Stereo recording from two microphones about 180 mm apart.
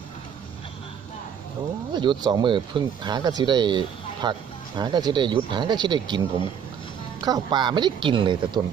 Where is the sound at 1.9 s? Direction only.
25° right (ahead or behind).